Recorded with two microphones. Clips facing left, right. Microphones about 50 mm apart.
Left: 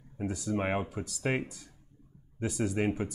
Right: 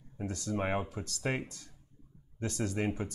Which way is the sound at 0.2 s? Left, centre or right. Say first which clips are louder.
Left 3 dB; centre.